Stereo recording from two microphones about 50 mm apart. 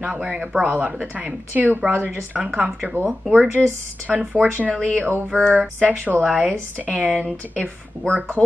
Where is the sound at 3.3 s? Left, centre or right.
Right.